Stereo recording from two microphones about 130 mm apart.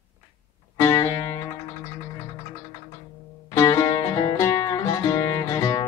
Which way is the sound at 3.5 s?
25° left (ahead or behind).